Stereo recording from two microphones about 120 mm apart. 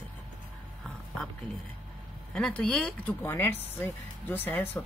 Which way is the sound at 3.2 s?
20° left (ahead or behind).